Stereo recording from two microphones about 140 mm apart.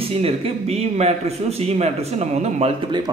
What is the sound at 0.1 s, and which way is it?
A man's voice, 45° right (ahead or behind).